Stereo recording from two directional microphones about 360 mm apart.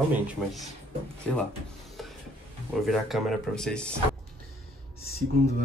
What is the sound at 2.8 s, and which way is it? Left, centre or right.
Speech, centre.